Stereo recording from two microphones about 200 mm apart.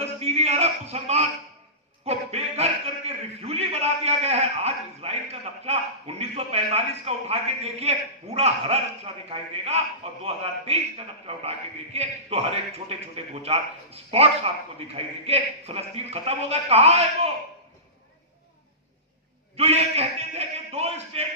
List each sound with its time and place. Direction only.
0.0 s a sound: 30° right (ahead or behind)
2.0 s a man's voice: 30° right (ahead or behind)
19.5 s a man's voice: 30° right (ahead or behind)